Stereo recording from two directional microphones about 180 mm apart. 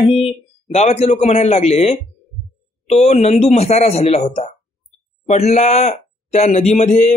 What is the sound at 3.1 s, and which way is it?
Speech, 35° left (ahead or behind).